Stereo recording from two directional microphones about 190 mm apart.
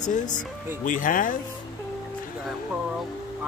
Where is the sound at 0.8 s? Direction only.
45° left (ahead or behind).